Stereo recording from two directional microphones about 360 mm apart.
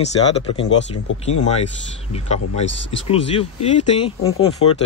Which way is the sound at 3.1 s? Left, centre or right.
Centre.